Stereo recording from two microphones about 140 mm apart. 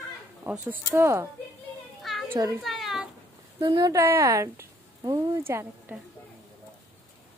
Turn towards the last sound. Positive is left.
turn(degrees=-15)  # may be behind; listen again after turning